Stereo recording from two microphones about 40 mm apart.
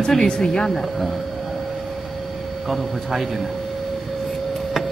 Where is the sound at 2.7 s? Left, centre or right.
Centre.